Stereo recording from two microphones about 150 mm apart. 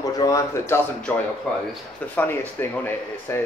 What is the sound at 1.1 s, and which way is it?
Speech, 10° left (ahead or behind).